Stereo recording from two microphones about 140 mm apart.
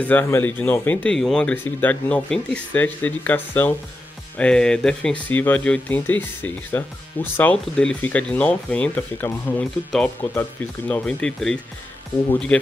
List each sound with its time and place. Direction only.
0.0 s speech: 15° left (ahead or behind)